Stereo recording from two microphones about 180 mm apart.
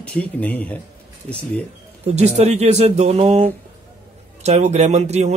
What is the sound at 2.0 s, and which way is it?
Speech, 35° right (ahead or behind).